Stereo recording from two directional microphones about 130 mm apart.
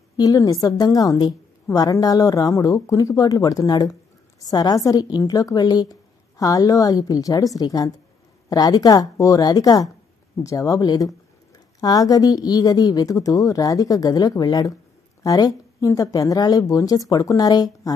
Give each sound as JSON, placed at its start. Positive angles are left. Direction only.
{"t": 0.2, "sound": "speech", "side_deg": 30}